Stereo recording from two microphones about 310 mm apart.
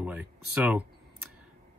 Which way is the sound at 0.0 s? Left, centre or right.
Centre.